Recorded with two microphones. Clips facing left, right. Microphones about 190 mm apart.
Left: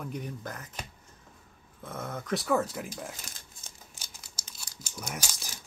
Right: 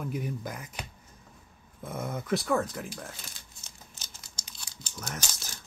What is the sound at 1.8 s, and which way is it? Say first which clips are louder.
Speech: right 3 dB; 10° right (ahead or behind).